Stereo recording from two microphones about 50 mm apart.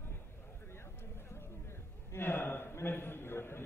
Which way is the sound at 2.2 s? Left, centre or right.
Left.